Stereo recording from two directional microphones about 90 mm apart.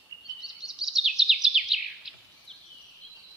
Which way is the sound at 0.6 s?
5° right (ahead or behind).